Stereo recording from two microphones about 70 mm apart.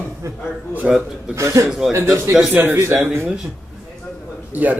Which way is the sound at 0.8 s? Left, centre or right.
Centre.